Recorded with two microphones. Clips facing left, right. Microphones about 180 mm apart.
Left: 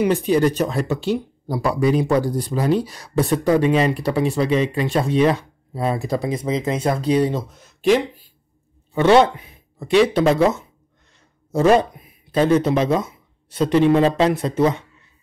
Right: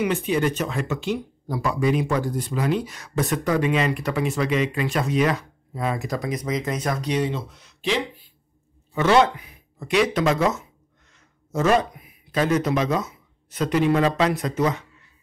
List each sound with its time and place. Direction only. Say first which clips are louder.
0.0 s speech: left 5 dB; 35° left (ahead or behind)
8.9 s speech: left 4 dB; 30° left (ahead or behind)